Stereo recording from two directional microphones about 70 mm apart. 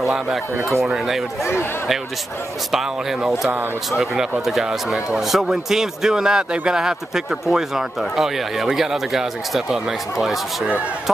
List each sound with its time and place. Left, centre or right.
0.0 s speech: centre
1.4 s speech: left
2.7 s speech: centre